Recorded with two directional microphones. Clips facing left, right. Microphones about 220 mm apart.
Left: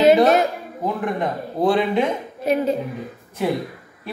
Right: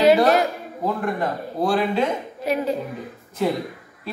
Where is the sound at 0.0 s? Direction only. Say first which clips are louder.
Left 2 dB; 20° left (ahead or behind).